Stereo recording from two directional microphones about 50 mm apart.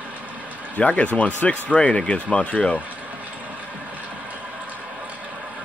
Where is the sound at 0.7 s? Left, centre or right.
Left.